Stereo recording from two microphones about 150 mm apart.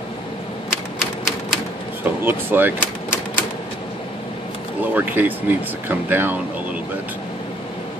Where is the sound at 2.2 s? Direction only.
15° right (ahead or behind).